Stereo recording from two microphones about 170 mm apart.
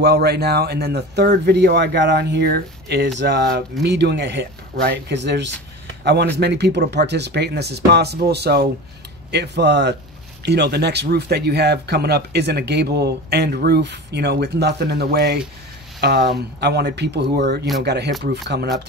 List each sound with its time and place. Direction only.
0.0 s speech: 70° right (ahead or behind)
3.8 s speech: 90° right